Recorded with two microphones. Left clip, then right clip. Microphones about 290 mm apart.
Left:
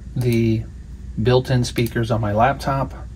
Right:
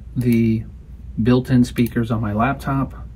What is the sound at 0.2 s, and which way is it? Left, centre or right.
Speech, left.